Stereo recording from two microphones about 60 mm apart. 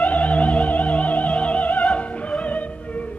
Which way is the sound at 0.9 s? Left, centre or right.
Left.